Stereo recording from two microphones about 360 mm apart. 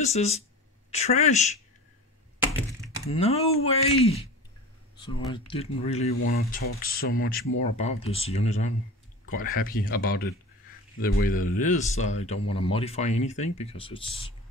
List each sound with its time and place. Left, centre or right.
0.0 s speech: centre
3.1 s speech: centre
5.3 s speech: centre
6.1 s speech: left